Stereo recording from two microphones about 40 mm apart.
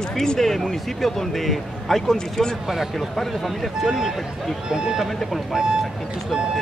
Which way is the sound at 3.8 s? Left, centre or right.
Centre.